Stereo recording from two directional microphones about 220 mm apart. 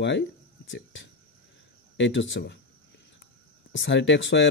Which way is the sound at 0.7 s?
55° left (ahead or behind).